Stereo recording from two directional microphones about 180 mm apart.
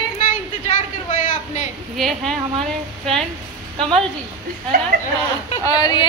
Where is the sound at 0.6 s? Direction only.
40° left (ahead or behind).